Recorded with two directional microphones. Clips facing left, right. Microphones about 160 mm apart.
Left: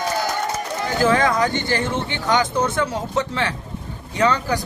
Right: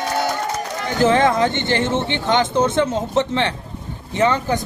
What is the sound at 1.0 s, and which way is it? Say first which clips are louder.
A man's voice: right 3 dB; 25° right (ahead or behind).